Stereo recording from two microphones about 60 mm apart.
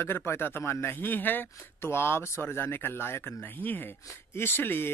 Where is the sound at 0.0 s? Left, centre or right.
Left.